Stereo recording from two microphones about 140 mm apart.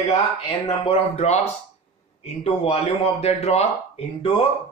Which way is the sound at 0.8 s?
45° left (ahead or behind).